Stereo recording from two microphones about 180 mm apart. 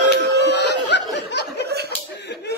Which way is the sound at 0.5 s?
70° left (ahead or behind).